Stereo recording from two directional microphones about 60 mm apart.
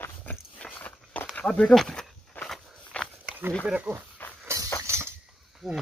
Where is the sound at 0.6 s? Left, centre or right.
Left.